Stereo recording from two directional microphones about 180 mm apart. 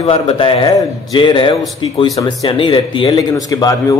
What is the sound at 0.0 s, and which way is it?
A man's voice, 35° left (ahead or behind).